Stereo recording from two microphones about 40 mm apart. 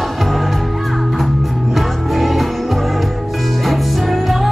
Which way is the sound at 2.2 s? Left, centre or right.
Centre.